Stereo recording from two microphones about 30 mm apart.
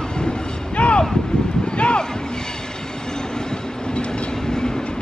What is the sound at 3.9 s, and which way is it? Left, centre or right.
Train, left.